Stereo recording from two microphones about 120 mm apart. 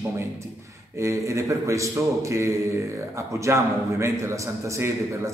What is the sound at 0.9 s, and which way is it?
A man's voice, 25° right (ahead or behind).